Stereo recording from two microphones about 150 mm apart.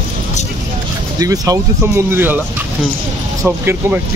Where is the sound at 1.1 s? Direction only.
25° right (ahead or behind).